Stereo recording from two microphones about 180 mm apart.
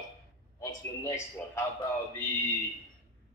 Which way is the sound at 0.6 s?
20° left (ahead or behind).